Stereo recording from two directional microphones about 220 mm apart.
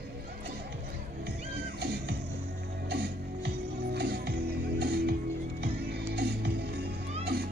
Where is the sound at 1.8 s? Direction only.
50° right (ahead or behind).